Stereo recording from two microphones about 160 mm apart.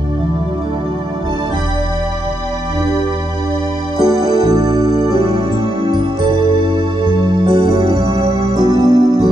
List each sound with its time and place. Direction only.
4.0 s music: 25° right (ahead or behind)